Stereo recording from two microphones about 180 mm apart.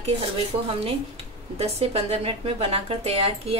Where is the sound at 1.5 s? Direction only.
35° right (ahead or behind).